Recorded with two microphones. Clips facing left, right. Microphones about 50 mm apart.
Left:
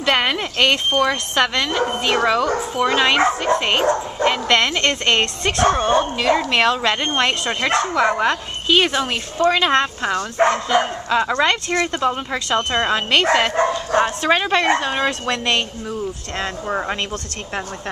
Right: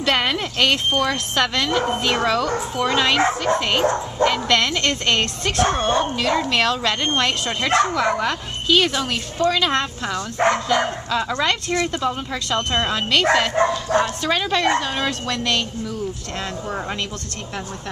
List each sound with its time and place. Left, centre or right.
0.0 s speech: centre